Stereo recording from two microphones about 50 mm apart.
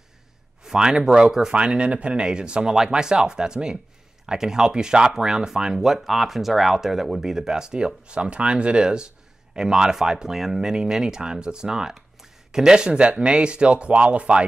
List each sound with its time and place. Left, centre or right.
0.7 s speech: centre